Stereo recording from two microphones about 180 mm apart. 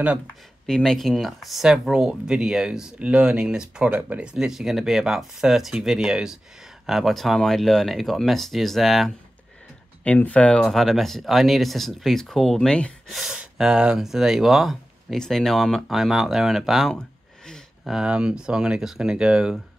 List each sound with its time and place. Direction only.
0.7 s speech: 5° left (ahead or behind)